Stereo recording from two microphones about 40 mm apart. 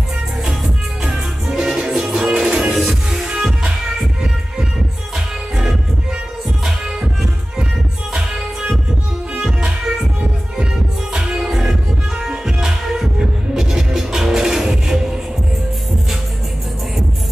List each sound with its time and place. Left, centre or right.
1.0 s music: centre
1.6 s music: centre
2.7 s music: centre
3.1 s music: centre
5.1 s music: centre
8.1 s music: centre
11.1 s music: centre